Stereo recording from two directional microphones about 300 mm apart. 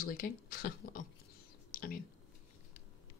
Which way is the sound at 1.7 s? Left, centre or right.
Left.